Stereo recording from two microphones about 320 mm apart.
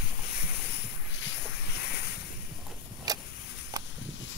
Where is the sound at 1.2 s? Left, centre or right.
Left.